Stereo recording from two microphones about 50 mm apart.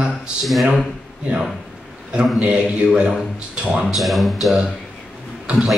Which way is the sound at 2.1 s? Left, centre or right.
Right.